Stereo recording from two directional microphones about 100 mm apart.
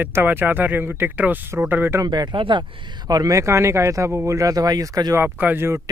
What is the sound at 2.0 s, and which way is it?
Speech, 45° right (ahead or behind).